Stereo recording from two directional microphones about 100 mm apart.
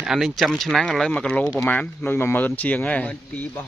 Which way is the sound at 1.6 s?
20° left (ahead or behind).